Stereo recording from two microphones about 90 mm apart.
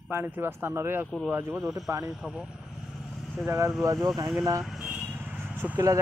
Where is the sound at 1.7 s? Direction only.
35° right (ahead or behind).